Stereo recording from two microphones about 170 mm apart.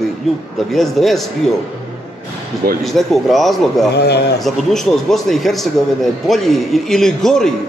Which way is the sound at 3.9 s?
75° left (ahead or behind).